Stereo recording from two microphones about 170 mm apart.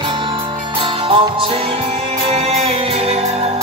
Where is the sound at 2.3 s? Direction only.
40° right (ahead or behind).